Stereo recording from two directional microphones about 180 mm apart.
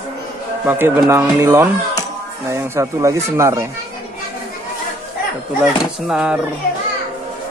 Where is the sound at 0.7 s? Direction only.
10° right (ahead or behind).